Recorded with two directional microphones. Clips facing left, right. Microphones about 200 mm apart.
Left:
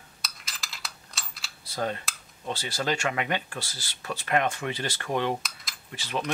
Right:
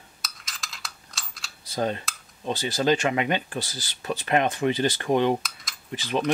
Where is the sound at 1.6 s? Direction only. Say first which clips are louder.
Right 4 dB; 20° right (ahead or behind).